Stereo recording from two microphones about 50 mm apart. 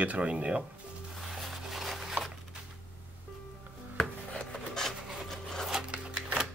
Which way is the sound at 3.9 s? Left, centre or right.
Centre.